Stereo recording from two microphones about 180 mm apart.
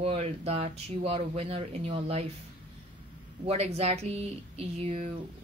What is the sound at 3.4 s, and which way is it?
Speech, 35° right (ahead or behind).